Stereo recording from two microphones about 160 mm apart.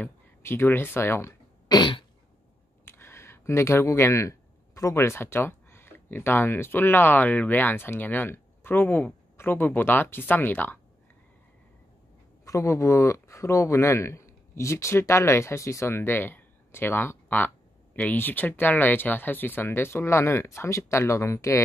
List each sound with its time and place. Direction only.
0.0 s throat clearing: 15° left (ahead or behind)
1.8 s throat clearing: 30° left (ahead or behind)
2.8 s speech: 15° left (ahead or behind)
12.4 s speech: 20° left (ahead or behind)